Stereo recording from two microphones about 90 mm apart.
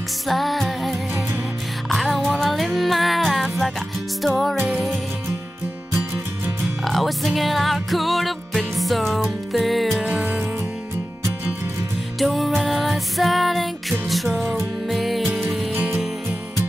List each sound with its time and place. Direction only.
0.3 s music: centre (ahead or behind)
6.8 s music: centre (ahead or behind)
10.0 s music: 15° right (ahead or behind)
12.2 s music: centre (ahead or behind)
15.7 s music: 20° right (ahead or behind)